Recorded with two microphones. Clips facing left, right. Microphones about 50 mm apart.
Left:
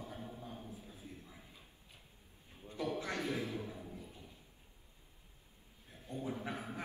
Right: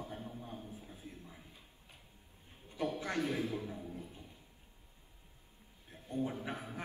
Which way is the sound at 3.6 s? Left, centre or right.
Right.